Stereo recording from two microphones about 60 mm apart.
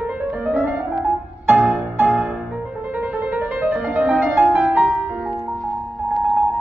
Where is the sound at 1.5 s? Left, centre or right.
Centre.